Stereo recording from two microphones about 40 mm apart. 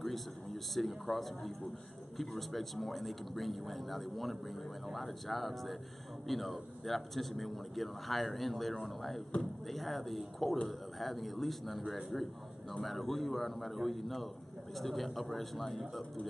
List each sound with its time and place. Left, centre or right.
0.0 s speech: centre